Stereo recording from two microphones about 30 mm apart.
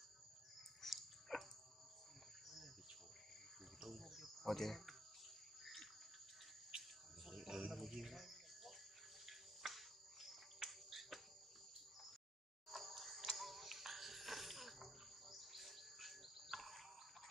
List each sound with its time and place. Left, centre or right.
0.8 s dog: centre
4.4 s cricket: centre
6.7 s cricket: right
7.7 s cricket: centre
12.6 s music: centre
13.4 s cricket: centre